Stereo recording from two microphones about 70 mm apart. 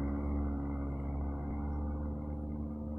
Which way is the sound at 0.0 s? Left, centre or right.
Centre.